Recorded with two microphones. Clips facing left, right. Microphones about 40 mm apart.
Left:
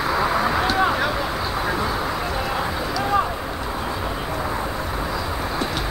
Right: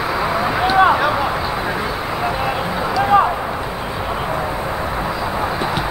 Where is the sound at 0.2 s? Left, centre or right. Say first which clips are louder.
Right 4 dB; centre.